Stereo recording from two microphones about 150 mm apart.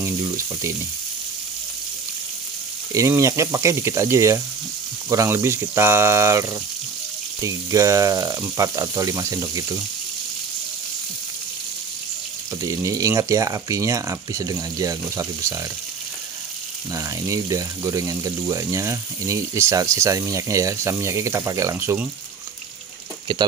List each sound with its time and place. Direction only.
2.9 s speech: 20° right (ahead or behind)
12.6 s speech: 20° right (ahead or behind)
16.9 s speech: 20° right (ahead or behind)